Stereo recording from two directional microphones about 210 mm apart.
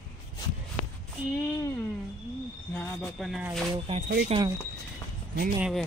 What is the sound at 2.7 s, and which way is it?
Speech, 5° left (ahead or behind).